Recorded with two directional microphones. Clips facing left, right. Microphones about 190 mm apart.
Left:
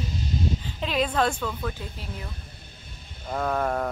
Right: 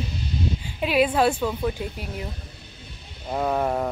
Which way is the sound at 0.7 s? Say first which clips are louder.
Right 9 dB; 10° right (ahead or behind).